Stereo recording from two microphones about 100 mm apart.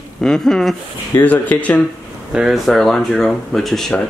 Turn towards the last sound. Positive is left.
turn(degrees=5)  # may be behind; listen again after turning